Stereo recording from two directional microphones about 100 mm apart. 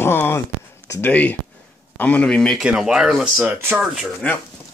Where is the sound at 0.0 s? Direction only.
25° left (ahead or behind).